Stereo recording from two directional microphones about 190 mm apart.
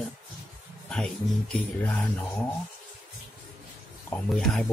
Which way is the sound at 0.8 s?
5° left (ahead or behind).